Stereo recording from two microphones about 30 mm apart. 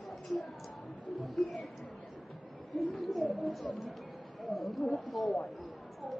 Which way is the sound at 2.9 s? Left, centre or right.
Centre.